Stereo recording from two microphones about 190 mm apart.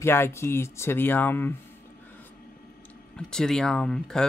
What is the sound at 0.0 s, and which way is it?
Speech, 15° left (ahead or behind).